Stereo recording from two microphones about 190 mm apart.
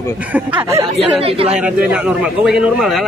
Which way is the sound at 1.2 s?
30° right (ahead or behind).